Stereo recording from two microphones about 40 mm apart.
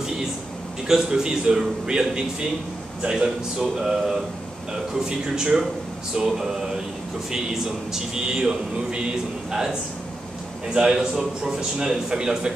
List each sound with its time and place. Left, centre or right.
0.8 s speech: centre